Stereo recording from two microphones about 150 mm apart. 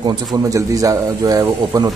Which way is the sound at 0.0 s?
25° right (ahead or behind).